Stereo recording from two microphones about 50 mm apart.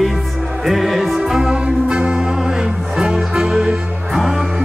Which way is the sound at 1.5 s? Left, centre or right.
Right.